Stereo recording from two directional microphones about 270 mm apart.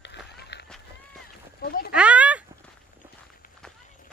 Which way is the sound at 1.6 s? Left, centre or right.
Left.